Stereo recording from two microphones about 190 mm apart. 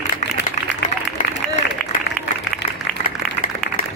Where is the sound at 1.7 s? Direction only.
65° left (ahead or behind).